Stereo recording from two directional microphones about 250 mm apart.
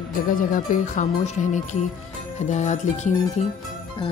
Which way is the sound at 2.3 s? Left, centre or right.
Left.